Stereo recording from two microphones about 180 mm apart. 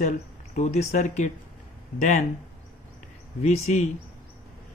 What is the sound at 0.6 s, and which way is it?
Speech, 40° left (ahead or behind).